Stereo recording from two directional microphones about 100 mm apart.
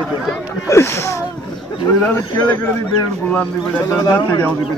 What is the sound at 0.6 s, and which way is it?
Speech, 25° left (ahead or behind).